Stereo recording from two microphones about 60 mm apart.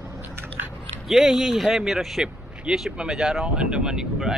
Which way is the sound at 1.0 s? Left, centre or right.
Centre.